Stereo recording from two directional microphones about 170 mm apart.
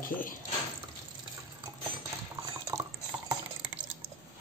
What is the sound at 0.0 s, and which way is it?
Speech, 55° left (ahead or behind).